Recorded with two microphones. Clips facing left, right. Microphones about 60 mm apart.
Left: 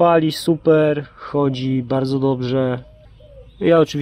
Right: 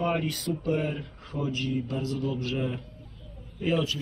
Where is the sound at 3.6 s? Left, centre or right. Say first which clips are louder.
Left 14 dB; left.